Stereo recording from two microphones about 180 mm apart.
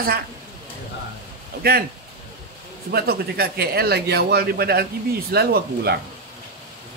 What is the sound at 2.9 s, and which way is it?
Speech, 60° right (ahead or behind).